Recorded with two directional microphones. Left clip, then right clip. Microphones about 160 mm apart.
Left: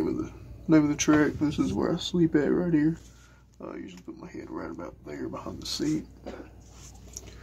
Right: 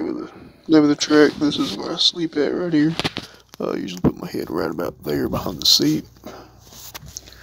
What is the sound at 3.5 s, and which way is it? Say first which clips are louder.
Speech: right 15 dB; 50° right (ahead or behind).